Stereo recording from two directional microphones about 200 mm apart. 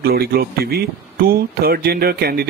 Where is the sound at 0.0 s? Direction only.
50° right (ahead or behind).